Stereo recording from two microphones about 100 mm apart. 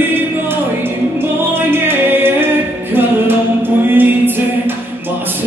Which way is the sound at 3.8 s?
20° right (ahead or behind).